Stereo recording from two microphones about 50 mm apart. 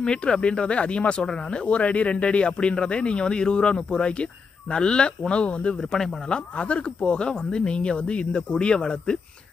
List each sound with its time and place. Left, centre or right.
0.0 s speech: centre
6.3 s speech: left